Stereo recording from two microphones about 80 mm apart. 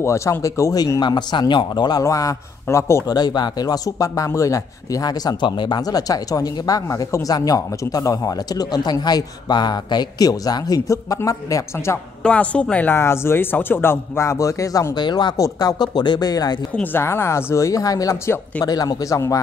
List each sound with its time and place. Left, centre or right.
0.0 s speech: left
1.0 s speech: left
2.0 s speech: left
3.1 s speech: left
12.2 s speech: centre
12.9 s speech: left
15.0 s speech: left
15.3 s speech: left
15.8 s speech: left
16.7 s speech: left